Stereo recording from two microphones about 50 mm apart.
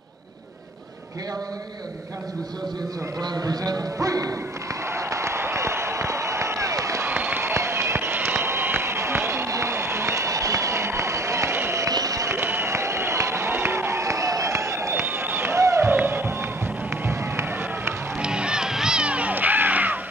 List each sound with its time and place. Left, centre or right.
4.9 s applause: right
7.1 s applause: right
7.4 s run: right
11.5 s a sound: right
12.4 s run: right
15.1 s a sound: right
15.5 s run: right
15.9 s run: right
18.2 s run: centre
19.0 s music: right